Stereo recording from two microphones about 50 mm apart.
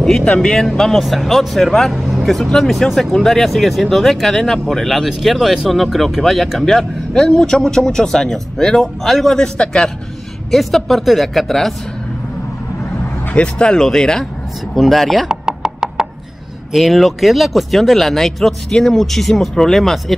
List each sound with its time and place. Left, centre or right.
0.2 s a man's voice: centre
10.5 s speech: centre
13.3 s a man's voice: left; by 15.2 s centre
15.2 s chopping: centre
16.7 s speech: centre